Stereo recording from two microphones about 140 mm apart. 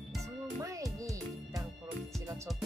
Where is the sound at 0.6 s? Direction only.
20° right (ahead or behind).